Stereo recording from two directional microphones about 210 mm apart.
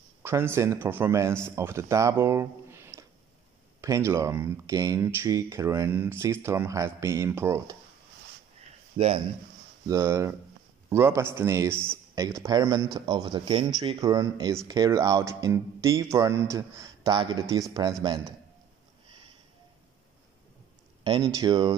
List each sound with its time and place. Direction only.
0.2 s speech: 10° right (ahead or behind)
8.9 s speech: 30° right (ahead or behind)
9.8 s speech: 15° right (ahead or behind)
21.0 s speech: 20° right (ahead or behind)